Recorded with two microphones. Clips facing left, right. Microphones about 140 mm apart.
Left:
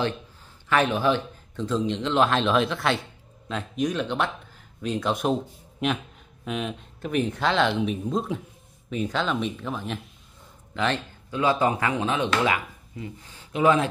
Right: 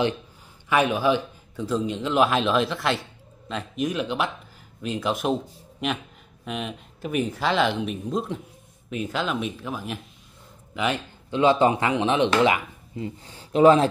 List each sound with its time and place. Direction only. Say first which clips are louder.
0.7 s a man's voice: right 1 dB; 10° right (ahead or behind)
11.2 s speech: right 4 dB; 25° right (ahead or behind)